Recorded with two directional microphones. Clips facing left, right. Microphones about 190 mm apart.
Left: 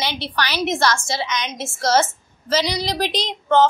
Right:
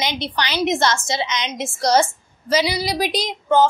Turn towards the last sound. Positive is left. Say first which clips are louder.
# even
turn(degrees=-10)  # may be behind; listen again after turning